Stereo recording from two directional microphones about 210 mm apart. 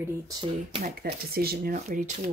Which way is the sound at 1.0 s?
45° right (ahead or behind).